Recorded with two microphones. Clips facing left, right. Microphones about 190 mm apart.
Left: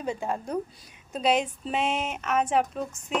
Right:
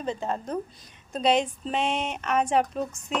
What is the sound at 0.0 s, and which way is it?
A woman's voice, 10° left (ahead or behind).